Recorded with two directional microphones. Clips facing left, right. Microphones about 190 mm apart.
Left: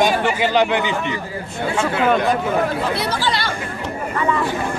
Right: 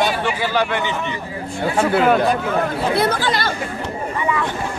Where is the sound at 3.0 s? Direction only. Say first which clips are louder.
Right 3 dB; 50° right (ahead or behind).